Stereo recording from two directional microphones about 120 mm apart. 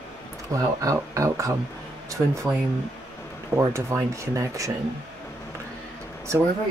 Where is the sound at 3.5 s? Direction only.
25° right (ahead or behind).